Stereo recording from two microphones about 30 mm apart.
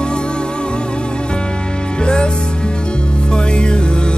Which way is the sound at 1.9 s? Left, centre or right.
Left.